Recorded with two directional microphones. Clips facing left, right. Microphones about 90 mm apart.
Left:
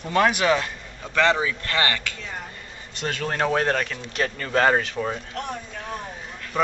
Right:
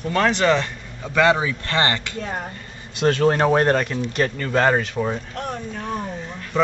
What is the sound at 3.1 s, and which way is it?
Speech, 30° right (ahead or behind).